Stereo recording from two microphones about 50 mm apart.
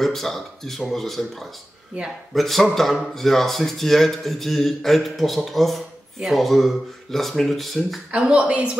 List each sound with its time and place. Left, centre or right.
0.0 s speech: centre
8.1 s a man's voice: right